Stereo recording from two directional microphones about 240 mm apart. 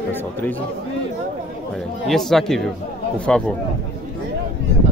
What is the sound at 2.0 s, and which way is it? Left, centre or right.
Speech, centre.